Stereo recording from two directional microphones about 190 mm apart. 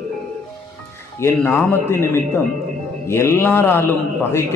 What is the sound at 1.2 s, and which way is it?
A man's voice, 10° left (ahead or behind).